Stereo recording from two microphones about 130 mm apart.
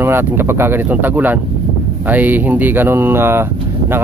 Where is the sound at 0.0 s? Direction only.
15° right (ahead or behind).